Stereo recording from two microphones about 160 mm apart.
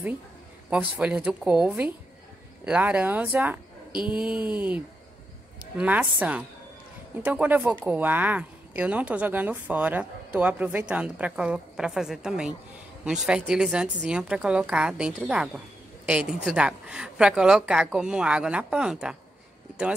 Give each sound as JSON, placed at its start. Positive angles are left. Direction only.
{"t": 0.7, "sound": "speech", "side_deg": -10}
{"t": 3.9, "sound": "a sound", "side_deg": 30}
{"t": 4.2, "sound": "speech", "side_deg": -5}
{"t": 5.8, "sound": "a woman's voice", "side_deg": -10}